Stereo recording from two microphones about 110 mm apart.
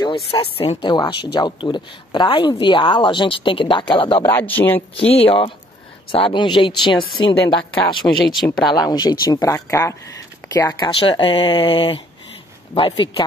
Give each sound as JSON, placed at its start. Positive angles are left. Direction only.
{"t": 0.3, "sound": "speech", "side_deg": 55}
{"t": 0.8, "sound": "speech", "side_deg": 45}
{"t": 4.4, "sound": "speech", "side_deg": 15}
{"t": 4.9, "sound": "speech", "side_deg": 60}
{"t": 10.8, "sound": "speech", "side_deg": 55}